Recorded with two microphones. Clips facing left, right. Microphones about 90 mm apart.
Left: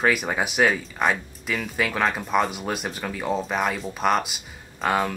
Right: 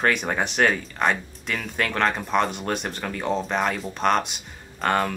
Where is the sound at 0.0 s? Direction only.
5° left (ahead or behind).